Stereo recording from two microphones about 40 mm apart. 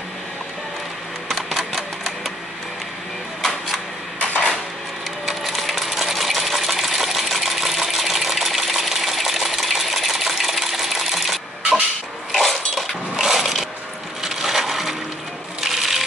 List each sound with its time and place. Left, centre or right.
1.3 s typewriter: centre
4.2 s dishes: left
5.3 s coin: centre
12.3 s cutlery: centre
13.1 s a sound: centre
14.2 s coin: centre
15.6 s a sound: centre